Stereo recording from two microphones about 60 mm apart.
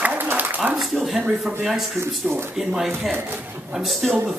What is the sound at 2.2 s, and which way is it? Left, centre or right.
Speech, right.